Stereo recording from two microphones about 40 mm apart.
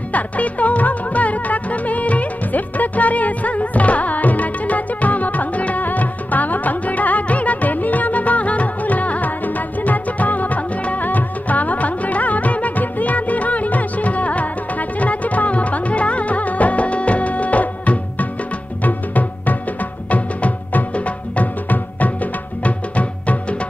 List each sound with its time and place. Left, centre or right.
0.1 s music: left